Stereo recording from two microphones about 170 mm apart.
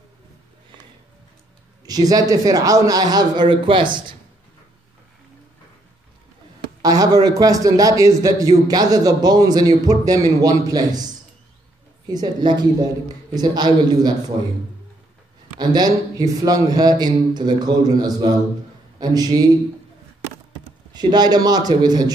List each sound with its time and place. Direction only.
1.9 s a man's voice: 20° right (ahead or behind)
6.8 s a man's voice: 20° right (ahead or behind)
12.1 s a man's voice: 25° right (ahead or behind)
15.6 s a man's voice: 25° right (ahead or behind)
20.9 s a man's voice: 25° right (ahead or behind)